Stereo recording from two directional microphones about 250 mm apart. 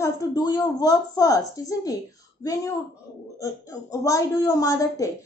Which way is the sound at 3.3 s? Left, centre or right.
Centre.